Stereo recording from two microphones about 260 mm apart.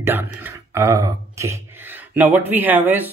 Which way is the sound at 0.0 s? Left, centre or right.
Centre.